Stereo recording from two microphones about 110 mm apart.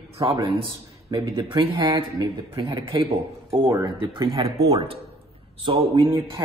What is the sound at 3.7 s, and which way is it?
Speech, 30° right (ahead or behind).